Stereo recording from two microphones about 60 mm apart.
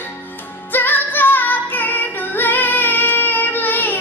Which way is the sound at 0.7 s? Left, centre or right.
Left.